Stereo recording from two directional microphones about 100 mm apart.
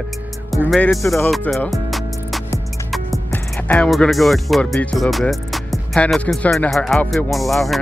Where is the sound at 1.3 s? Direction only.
Centre (ahead or behind).